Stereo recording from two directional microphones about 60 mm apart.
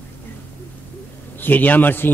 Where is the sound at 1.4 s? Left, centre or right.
Left.